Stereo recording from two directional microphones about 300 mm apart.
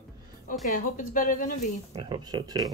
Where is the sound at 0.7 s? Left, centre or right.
Left.